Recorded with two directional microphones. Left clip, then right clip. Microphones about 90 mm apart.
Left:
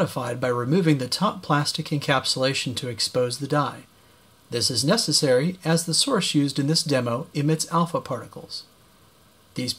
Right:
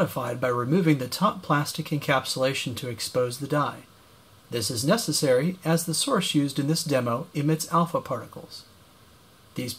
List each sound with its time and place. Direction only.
0.0 s speech: 35° left (ahead or behind)